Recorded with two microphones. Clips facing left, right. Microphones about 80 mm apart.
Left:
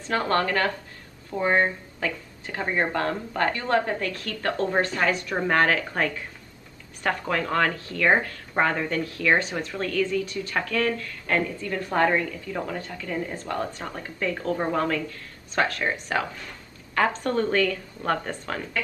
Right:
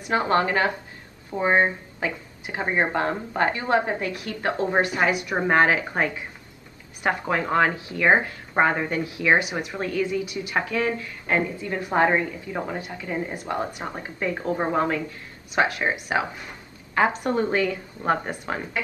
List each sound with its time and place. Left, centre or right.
0.0 s speech: centre